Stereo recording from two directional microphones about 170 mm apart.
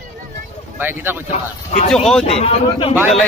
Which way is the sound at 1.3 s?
40° left (ahead or behind).